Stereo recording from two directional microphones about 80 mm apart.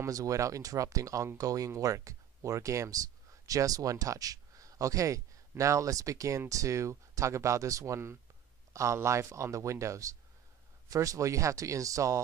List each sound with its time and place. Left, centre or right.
0.0 s speech: right